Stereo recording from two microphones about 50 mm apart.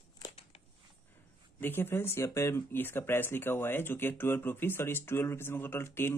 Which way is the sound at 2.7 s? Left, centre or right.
Left.